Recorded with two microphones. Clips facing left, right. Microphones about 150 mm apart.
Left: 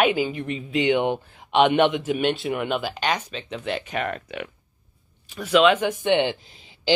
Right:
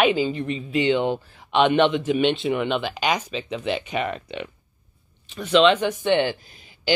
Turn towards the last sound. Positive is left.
turn(degrees=25)  # may be behind; listen again after turning